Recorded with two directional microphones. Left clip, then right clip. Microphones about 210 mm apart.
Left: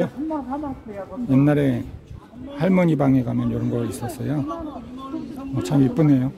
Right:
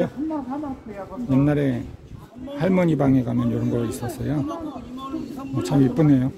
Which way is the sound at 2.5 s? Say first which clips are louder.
Left 1 dB; 10° left (ahead or behind).